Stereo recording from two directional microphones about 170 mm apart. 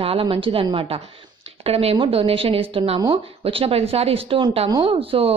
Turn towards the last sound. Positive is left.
turn(degrees=-35)  # may be behind; listen again after turning